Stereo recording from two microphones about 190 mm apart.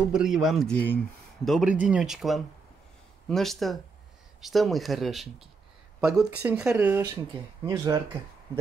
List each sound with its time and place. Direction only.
0.1 s a man's voice: 5° right (ahead or behind)
6.4 s speech: 15° right (ahead or behind)